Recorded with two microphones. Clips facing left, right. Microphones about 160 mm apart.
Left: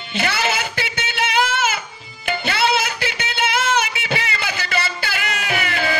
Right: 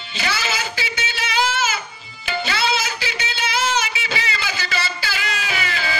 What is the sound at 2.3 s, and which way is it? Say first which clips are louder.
Music: left 3 dB; 60° left (ahead or behind).